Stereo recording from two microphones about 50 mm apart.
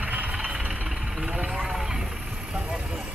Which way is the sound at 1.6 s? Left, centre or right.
Centre.